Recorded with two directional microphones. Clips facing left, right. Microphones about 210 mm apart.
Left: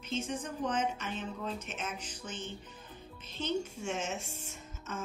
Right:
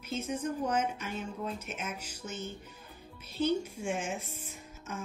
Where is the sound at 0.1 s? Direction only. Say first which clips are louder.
Right 3 dB; 10° right (ahead or behind).